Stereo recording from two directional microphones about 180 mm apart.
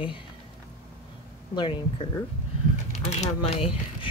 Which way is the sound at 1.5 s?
25° left (ahead or behind).